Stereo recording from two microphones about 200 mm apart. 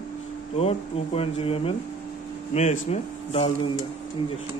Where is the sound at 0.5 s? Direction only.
30° left (ahead or behind).